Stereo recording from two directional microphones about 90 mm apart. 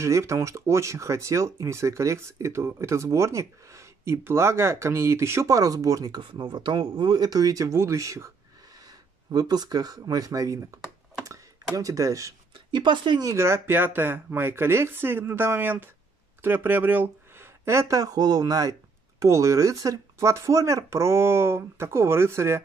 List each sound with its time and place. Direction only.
0.0 s speech: 35° right (ahead or behind)
9.3 s speech: 50° right (ahead or behind)
12.5 s speech: 60° right (ahead or behind)
13.2 s speech: 35° right (ahead or behind)